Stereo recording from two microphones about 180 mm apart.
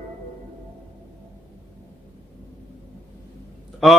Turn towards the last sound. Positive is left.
turn(degrees=0)  # may be behind; listen again after turning